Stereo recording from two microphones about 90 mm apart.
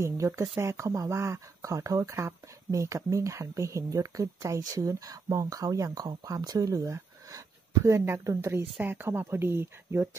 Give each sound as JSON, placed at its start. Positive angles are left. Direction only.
{"t": 0.0, "sound": "speech", "side_deg": -35}